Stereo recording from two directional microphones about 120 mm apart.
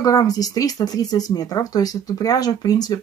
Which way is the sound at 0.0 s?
30° left (ahead or behind).